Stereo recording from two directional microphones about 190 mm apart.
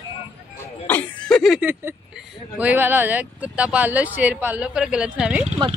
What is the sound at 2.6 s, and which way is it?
Speech, 10° right (ahead or behind).